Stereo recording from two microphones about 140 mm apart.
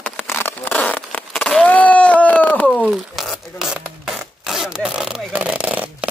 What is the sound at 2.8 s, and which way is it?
Rub, centre (ahead or behind).